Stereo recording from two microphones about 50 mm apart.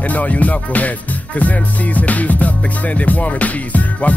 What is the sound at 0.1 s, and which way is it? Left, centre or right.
Music, left.